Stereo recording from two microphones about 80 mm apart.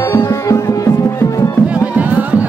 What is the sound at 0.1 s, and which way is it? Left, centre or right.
Music, left.